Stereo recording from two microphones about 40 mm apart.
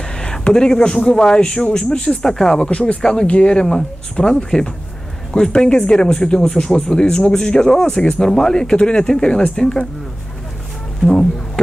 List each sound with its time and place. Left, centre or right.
0.2 s a sound: centre
1.0 s speech: centre
2.0 s speech: centre
2.6 s speech: left
3.0 s speech: centre
3.3 s speech: left
3.6 s speech: centre
11.1 s speech: centre